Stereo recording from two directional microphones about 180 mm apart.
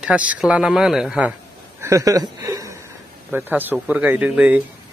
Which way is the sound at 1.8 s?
15° right (ahead or behind).